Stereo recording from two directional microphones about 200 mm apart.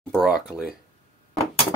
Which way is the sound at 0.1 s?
Centre (ahead or behind).